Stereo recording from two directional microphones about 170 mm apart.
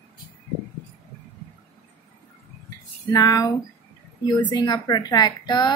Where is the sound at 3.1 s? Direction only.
20° left (ahead or behind).